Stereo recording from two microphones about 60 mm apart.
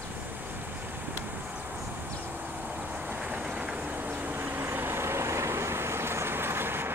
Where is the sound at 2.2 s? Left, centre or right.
Right.